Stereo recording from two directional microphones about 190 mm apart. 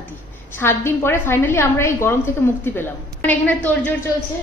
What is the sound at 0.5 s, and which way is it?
A woman's voice, 10° left (ahead or behind).